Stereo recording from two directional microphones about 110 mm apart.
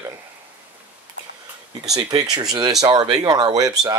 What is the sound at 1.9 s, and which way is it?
Speech, 35° right (ahead or behind).